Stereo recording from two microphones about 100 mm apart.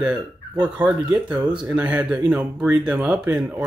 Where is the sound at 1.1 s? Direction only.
40° right (ahead or behind).